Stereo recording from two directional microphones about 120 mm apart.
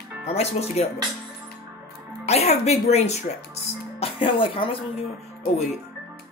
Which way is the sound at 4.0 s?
45° left (ahead or behind).